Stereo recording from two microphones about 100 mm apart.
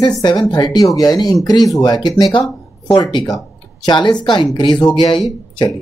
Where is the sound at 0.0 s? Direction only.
50° left (ahead or behind).